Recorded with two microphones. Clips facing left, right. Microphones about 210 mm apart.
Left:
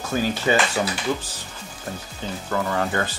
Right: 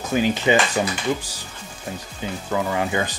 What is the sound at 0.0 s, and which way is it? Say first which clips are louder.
Speech: right 3 dB; 15° right (ahead or behind).